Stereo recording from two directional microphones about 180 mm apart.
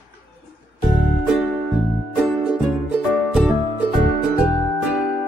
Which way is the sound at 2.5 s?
5° right (ahead or behind).